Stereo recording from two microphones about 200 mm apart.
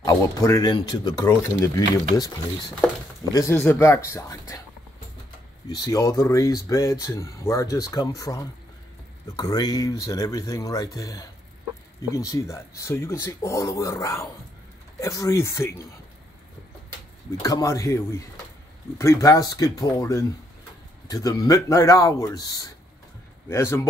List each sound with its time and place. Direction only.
0.0 s speech: 15° left (ahead or behind)
5.7 s speech: 20° left (ahead or behind)
17.4 s speech: 15° left (ahead or behind)